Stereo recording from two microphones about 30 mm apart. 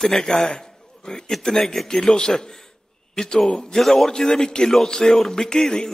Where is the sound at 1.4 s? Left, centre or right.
Centre.